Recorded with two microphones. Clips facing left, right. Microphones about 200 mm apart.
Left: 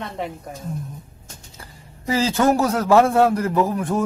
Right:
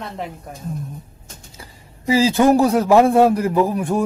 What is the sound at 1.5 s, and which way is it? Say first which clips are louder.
A man's voice: right 1 dB; 10° right (ahead or behind).